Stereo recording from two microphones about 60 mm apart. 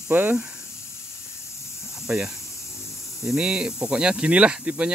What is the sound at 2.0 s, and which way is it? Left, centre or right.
Speech, centre.